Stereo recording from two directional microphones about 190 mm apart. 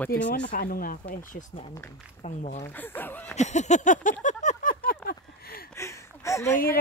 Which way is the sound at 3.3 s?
35° left (ahead or behind).